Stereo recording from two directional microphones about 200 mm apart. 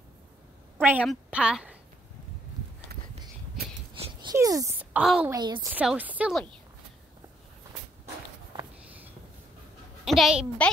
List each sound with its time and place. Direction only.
0.8 s a woman's voice: 5° right (ahead or behind)
4.3 s a sound: 15° right (ahead or behind)
5.3 s a woman's voice: 20° right (ahead or behind)
5.7 s a woman's voice: 5° right (ahead or behind)
10.0 s a woman's voice: centre (ahead or behind)